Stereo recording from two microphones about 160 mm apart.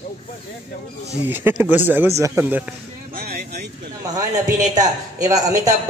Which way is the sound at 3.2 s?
75° right (ahead or behind).